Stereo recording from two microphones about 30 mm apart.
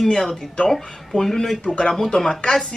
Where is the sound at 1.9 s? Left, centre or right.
Centre.